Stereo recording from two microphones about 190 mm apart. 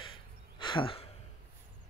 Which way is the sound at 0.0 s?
25° left (ahead or behind).